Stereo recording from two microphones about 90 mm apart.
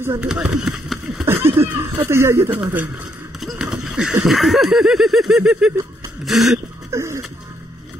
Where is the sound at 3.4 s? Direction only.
5° right (ahead or behind).